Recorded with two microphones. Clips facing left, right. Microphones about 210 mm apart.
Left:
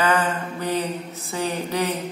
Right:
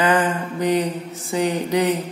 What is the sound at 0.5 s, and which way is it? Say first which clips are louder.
A man's voice: right 7 dB; 15° right (ahead or behind).